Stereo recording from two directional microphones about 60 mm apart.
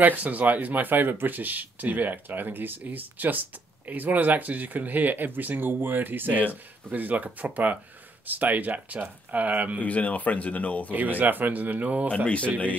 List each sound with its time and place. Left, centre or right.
0.0 s speech: right
9.8 s speech: left
10.9 s speech: right